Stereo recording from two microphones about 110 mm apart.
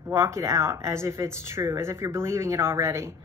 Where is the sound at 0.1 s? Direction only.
25° right (ahead or behind).